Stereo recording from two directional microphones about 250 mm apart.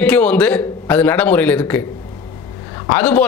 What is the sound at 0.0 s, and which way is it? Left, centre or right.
A man's voice, centre.